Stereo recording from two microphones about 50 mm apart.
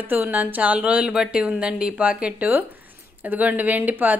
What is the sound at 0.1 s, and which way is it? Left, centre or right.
A woman's voice, right.